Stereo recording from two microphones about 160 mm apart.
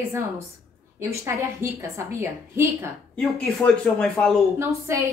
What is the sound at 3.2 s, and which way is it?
Speech, 5° left (ahead or behind).